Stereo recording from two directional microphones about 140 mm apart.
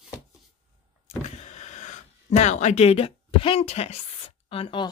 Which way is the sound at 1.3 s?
55° left (ahead or behind).